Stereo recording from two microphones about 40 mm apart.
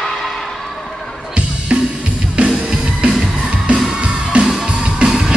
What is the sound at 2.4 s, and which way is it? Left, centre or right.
Music, right.